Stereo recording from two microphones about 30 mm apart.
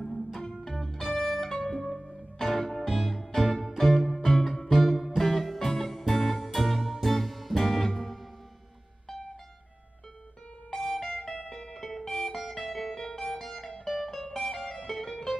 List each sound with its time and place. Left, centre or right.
0.4 s music: centre
10.7 s music: centre
12.1 s music: left
12.4 s music: centre
12.9 s music: centre